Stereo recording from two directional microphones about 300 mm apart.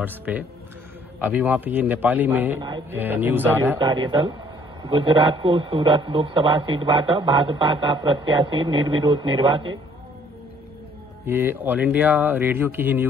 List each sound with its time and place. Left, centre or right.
0.0 s a man's voice: centre
11.2 s a man's voice: centre